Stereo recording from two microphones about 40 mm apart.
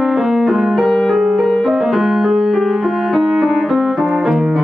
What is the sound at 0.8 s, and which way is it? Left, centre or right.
Music, centre.